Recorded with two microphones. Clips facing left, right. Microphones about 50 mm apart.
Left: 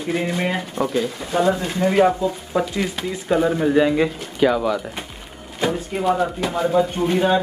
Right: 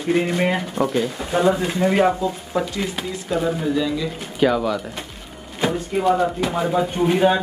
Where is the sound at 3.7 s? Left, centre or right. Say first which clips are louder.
Left 6 dB; left.